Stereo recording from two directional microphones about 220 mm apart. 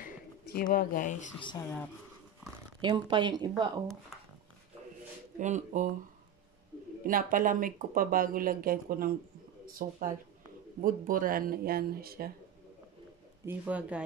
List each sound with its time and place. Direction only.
0.0 s bird: 40° left (ahead or behind)
1.4 s speech: 15° left (ahead or behind)
2.8 s speech: 20° right (ahead or behind)
5.4 s speech: 35° right (ahead or behind)
7.1 s speech: 40° right (ahead or behind)
13.5 s speech: 5° right (ahead or behind)